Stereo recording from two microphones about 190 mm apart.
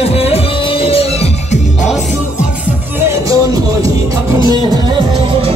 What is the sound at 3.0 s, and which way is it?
Music, 15° right (ahead or behind).